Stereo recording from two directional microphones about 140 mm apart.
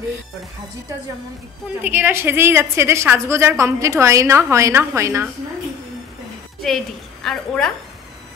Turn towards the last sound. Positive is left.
turn(degrees=5)  # may be behind; listen again after turning